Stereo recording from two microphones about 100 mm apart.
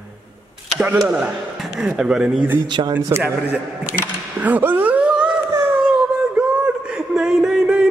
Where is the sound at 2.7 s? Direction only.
50° right (ahead or behind).